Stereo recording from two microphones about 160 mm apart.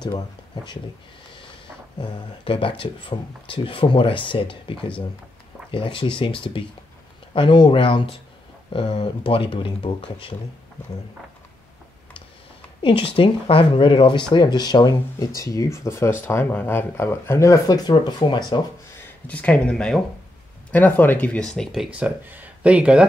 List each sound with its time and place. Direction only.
2.0 s speech: 30° left (ahead or behind)
7.3 s speech: 30° left (ahead or behind)
12.8 s speech: 35° left (ahead or behind)
19.2 s speech: 10° left (ahead or behind)
21.9 s speech: 10° right (ahead or behind)